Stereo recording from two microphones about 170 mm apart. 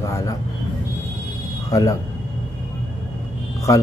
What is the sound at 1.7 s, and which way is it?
Speech, 20° left (ahead or behind).